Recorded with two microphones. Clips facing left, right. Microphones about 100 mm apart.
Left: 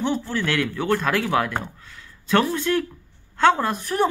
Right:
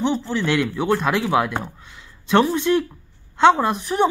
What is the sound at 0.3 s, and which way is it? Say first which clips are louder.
Speech: right 3 dB; 15° right (ahead or behind).